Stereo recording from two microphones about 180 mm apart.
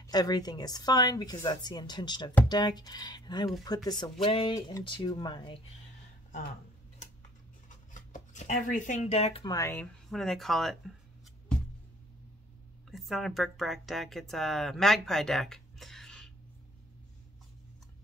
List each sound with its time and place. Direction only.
0.0 s speech: 20° left (ahead or behind)
7.9 s speech: 45° left (ahead or behind)
9.4 s speech: 20° left (ahead or behind)
10.0 s speech: centre (ahead or behind)
12.9 s speech: centre (ahead or behind)